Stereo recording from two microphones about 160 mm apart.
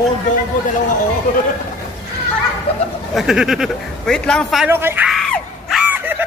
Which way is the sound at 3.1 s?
Centre (ahead or behind).